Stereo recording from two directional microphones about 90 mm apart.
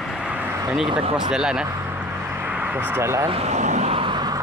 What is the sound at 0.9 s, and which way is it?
Speech, 80° right.